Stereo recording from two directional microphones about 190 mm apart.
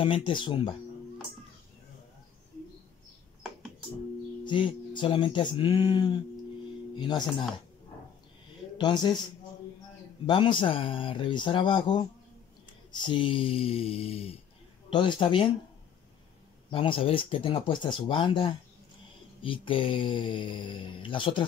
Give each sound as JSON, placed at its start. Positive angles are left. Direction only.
{"t": 0.0, "sound": "speech", "side_deg": 25}
{"t": 4.5, "sound": "speech", "side_deg": 25}
{"t": 8.7, "sound": "speech", "side_deg": 25}
{"t": 10.2, "sound": "speech", "side_deg": 25}
{"t": 16.7, "sound": "speech", "side_deg": 30}